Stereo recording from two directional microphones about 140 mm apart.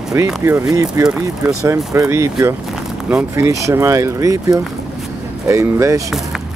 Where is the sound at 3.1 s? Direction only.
10° right (ahead or behind).